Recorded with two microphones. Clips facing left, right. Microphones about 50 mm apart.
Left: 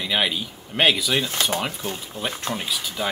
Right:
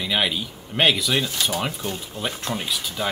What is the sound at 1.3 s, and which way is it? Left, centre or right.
Speech, left.